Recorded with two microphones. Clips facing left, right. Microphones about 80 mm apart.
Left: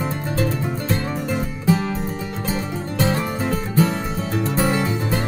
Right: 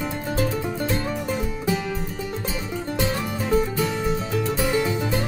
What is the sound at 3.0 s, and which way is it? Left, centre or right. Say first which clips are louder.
Music: left 5 dB; left.